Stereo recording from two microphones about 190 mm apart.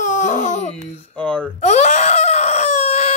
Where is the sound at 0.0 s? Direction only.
40° left (ahead or behind).